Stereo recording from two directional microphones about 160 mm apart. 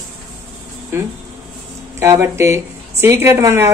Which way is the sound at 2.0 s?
15° right (ahead or behind).